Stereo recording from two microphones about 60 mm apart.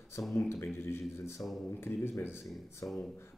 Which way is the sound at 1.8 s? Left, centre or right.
Left.